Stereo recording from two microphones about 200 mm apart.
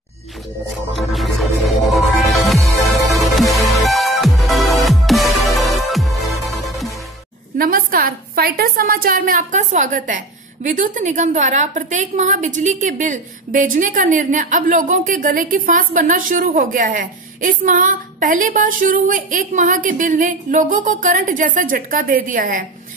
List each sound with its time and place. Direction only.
0.9 s music: centre (ahead or behind)
7.5 s a woman's voice: 45° right (ahead or behind)